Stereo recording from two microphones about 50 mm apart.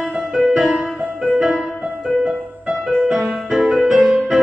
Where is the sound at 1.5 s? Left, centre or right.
Centre.